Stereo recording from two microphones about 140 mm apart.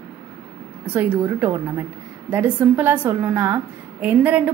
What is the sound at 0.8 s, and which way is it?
A woman's voice, 15° right (ahead or behind).